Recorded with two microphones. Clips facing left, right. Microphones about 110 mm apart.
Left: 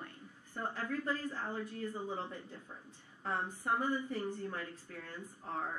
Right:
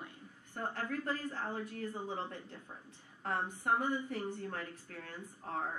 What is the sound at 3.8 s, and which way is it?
Speech, 20° right (ahead or behind).